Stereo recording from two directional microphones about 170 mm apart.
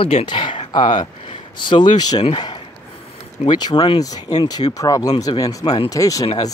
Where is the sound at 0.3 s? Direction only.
30° left (ahead or behind).